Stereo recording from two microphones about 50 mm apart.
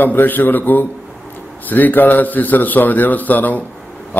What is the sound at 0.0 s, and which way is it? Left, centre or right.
A man's voice, left.